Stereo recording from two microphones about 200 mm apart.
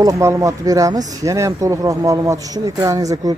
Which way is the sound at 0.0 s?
15° right (ahead or behind).